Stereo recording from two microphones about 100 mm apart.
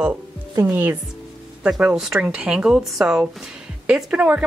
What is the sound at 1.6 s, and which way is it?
Speech, 5° right (ahead or behind).